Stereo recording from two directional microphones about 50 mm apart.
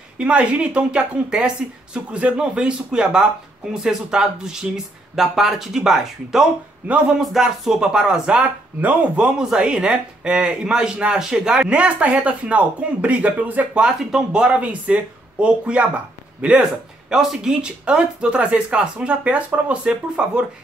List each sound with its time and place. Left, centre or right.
0.2 s speech: right; by 6.4 s centre
6.8 s speech: right
7.2 s speech: centre; by 13.8 s right
13.8 s speech: centre
17.1 s speech: centre
17.6 s speech: centre